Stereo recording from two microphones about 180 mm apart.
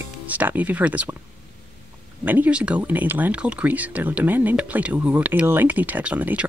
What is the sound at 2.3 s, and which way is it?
Speech, 10° right (ahead or behind).